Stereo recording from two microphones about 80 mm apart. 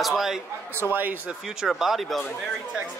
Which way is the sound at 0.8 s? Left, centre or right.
Right.